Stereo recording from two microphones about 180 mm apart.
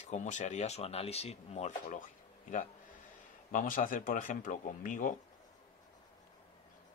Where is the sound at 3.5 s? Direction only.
50° left (ahead or behind).